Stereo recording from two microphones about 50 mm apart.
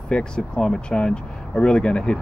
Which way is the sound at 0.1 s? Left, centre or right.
Centre.